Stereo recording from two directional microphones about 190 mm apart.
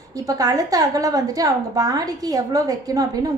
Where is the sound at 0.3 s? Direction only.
20° right (ahead or behind).